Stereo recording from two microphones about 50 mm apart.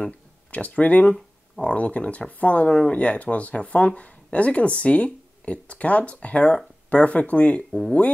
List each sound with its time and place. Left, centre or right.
0.5 s speech: left